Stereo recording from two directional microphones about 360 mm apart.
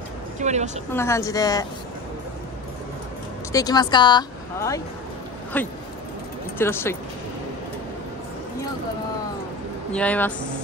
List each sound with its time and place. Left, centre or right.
0.4 s a woman's voice: centre
0.9 s speech: centre
3.5 s speech: centre
9.9 s speech: centre